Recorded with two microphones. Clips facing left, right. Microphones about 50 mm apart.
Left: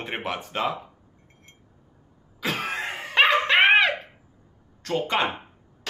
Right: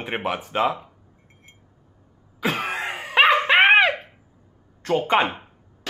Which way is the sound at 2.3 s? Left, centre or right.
Centre.